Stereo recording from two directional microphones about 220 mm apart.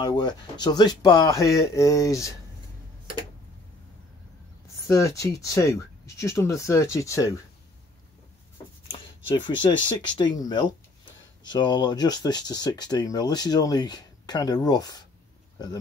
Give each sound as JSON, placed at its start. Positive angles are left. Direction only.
{"t": 0.0, "sound": "speech", "side_deg": 20}
{"t": 4.8, "sound": "speech", "side_deg": 15}
{"t": 9.3, "sound": "speech", "side_deg": 20}